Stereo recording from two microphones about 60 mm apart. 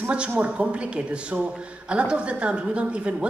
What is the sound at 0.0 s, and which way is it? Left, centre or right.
A woman's voice, centre.